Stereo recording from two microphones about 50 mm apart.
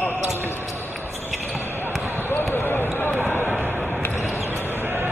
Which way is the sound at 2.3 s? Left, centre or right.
Left.